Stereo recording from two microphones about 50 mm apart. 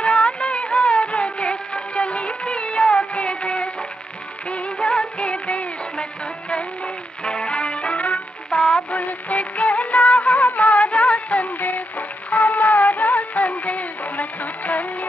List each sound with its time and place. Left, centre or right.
0.0 s music of bollywood: left
7.2 s music: centre
8.5 s music: centre
8.9 s music of bollywood: left